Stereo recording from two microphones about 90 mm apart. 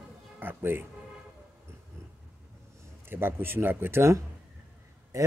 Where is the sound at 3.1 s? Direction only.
25° right (ahead or behind).